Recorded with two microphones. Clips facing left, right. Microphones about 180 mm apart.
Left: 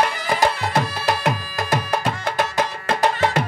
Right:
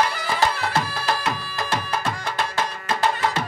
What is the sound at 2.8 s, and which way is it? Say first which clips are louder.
Music: left 3 dB; 65° left (ahead or behind).